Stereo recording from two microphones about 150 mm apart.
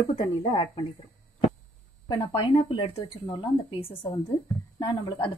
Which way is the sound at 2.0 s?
30° left (ahead or behind).